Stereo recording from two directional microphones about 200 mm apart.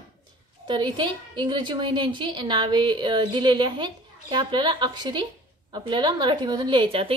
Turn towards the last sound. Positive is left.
turn(degrees=-25)  # may be behind; listen again after turning